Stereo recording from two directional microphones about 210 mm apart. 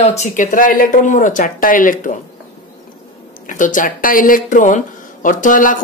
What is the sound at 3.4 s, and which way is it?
Speech, 40° left (ahead or behind).